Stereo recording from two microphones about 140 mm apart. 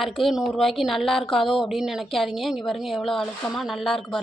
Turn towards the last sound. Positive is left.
turn(degrees=5)  # may be behind; listen again after turning